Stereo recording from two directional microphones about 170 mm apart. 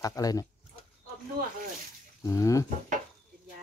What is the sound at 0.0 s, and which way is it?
Speech, 20° left (ahead or behind).